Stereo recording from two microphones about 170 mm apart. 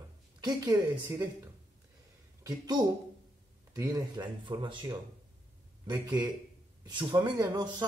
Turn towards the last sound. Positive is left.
turn(degrees=-25)  # may be behind; listen again after turning